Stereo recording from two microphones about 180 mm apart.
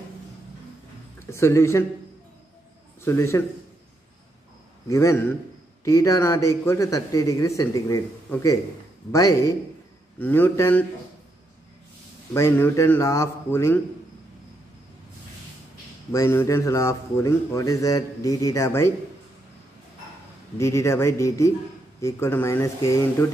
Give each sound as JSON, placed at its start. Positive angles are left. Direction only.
{"t": 1.2, "sound": "a man's voice", "side_deg": 15}
{"t": 3.1, "sound": "a man's voice", "side_deg": 15}
{"t": 4.8, "sound": "a man's voice", "side_deg": 15}
{"t": 12.4, "sound": "a man's voice", "side_deg": 15}
{"t": 16.1, "sound": "a man's voice", "side_deg": 15}
{"t": 20.5, "sound": "a man's voice", "side_deg": 15}